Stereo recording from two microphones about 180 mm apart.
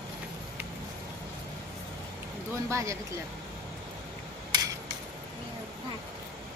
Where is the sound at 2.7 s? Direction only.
15° right (ahead or behind).